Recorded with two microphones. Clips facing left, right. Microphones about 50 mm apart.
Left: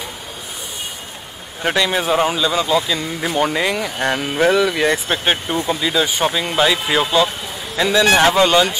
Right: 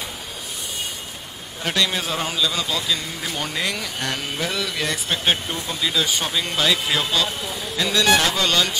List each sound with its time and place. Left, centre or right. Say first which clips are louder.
1.6 s a man's voice: left 5 dB; left
8.5 s speech: left 6 dB; centre